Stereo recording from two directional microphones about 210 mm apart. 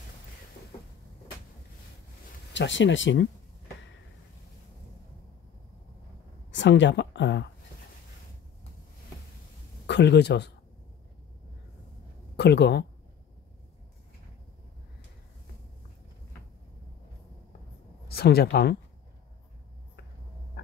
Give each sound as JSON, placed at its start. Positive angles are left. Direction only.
{"t": 2.5, "sound": "speech", "side_deg": 60}
{"t": 6.5, "sound": "speech", "side_deg": 60}
{"t": 9.8, "sound": "speech", "side_deg": 55}
{"t": 12.4, "sound": "speech", "side_deg": 50}
{"t": 18.0, "sound": "speech", "side_deg": 50}
{"t": 20.6, "sound": "rodents", "side_deg": 45}